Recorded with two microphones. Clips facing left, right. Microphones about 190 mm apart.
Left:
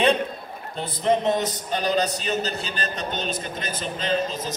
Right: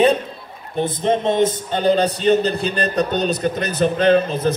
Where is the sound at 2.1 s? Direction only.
60° right (ahead or behind).